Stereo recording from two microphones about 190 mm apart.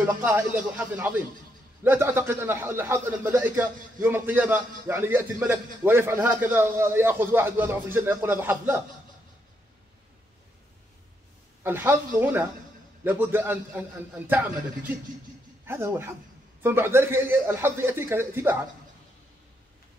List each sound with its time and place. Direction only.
0.0 s a man's voice: 10° right (ahead or behind)
11.6 s a man's voice: 10° right (ahead or behind)